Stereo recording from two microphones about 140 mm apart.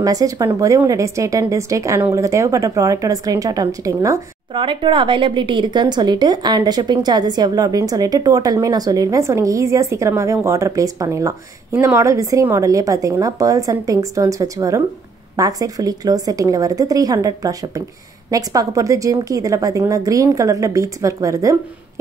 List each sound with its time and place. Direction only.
0.0 s a woman's voice: 25° right (ahead or behind)
4.6 s a woman's voice: 35° right (ahead or behind)